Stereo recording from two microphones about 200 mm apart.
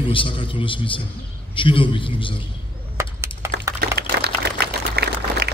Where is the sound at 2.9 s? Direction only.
15° right (ahead or behind).